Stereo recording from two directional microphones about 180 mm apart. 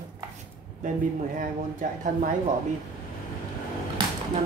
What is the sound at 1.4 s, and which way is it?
Speech, 45° right (ahead or behind).